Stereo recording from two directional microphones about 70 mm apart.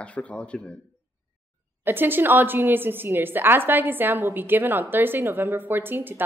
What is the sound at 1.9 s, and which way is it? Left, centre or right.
A woman's voice, right.